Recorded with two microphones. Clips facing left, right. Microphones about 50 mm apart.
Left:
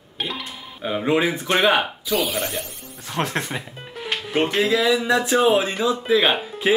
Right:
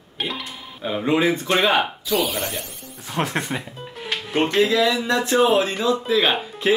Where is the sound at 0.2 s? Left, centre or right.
Centre.